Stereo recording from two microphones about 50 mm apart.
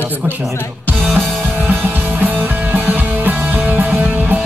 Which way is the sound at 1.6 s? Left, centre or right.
Right.